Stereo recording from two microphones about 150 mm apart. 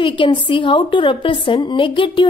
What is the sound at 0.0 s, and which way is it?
A woman's voice, 35° left (ahead or behind).